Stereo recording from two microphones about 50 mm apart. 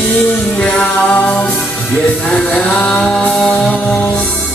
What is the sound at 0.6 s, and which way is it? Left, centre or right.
Music, left.